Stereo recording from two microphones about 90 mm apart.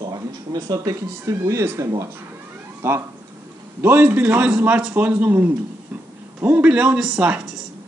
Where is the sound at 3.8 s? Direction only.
20° right (ahead or behind).